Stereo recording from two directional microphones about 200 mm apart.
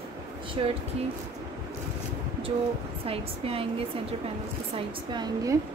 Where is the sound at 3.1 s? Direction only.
30° right (ahead or behind).